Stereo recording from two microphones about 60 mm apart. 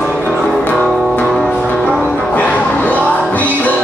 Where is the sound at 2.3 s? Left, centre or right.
Left.